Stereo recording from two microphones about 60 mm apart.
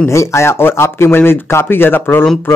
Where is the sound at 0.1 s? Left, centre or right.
Left.